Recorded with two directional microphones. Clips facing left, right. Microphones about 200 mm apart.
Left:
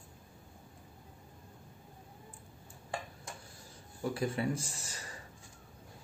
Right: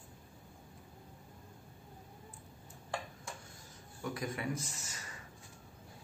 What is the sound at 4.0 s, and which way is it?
Speech, 30° left (ahead or behind).